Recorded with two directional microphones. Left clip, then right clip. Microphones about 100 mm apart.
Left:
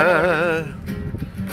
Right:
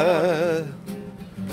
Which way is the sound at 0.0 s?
15° right (ahead or behind).